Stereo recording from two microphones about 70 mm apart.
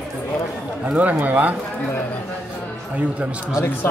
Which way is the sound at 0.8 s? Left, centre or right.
Centre.